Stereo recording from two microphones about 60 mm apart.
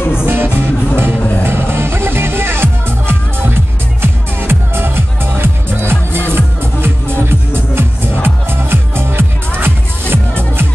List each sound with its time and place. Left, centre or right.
0.3 s music: right